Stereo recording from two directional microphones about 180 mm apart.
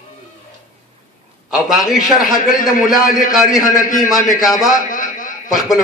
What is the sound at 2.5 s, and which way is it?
Speech, 50° left (ahead or behind).